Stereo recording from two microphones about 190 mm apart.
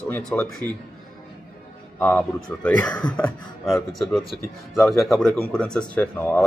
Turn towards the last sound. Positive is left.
turn(degrees=5)  # may be behind; listen again after turning